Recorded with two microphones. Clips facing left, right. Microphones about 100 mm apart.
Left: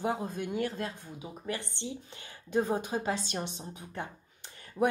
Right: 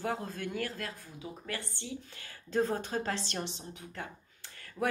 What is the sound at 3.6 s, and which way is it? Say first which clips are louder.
Speech: left 3 dB; 25° left (ahead or behind).